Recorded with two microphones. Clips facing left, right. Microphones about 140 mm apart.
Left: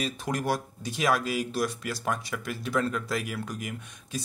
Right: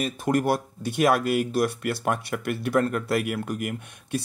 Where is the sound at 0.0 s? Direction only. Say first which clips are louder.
Right 6 dB; 50° right (ahead or behind).